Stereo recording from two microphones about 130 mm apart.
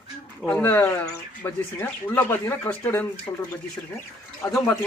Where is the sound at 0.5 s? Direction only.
15° left (ahead or behind).